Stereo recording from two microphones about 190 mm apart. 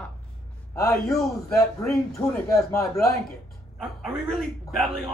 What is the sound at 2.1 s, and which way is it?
Speech, 15° left (ahead or behind).